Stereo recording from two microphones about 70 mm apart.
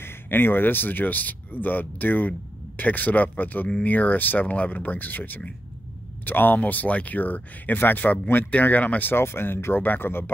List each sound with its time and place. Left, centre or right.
0.0 s speech: left